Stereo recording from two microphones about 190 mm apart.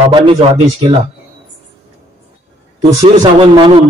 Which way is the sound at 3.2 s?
25° right (ahead or behind).